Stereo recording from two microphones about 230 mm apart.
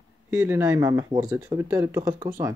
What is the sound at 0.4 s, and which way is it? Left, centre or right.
Speech, centre.